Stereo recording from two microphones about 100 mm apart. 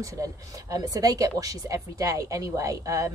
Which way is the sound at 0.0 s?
35° right (ahead or behind).